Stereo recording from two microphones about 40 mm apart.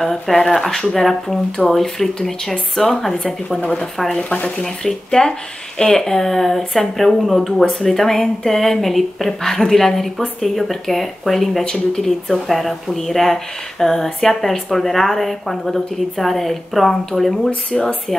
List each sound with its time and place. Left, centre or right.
0.0 s speech: centre; by 4.6 s left
4.6 s speech: centre
11.6 s speech: centre
17.6 s speech: left